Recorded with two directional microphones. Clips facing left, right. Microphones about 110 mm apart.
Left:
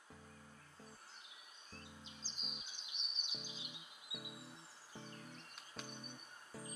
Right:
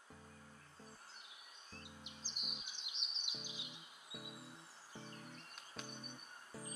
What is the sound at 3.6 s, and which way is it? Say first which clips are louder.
Music: even; 15° left (ahead or behind).